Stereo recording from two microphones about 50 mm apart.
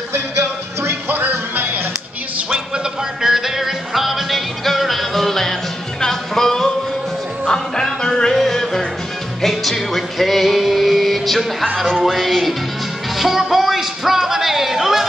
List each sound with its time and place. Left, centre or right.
0.1 s music: right
3.2 s music: centre
12.0 s music: centre